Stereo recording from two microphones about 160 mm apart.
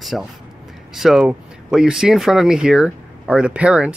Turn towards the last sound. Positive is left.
turn(degrees=-5)  # may be behind; listen again after turning